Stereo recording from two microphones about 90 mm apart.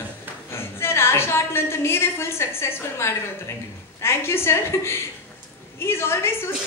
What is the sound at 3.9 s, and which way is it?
A man's voice, 30° left (ahead or behind).